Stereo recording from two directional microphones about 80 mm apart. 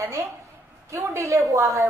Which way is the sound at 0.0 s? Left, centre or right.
Right.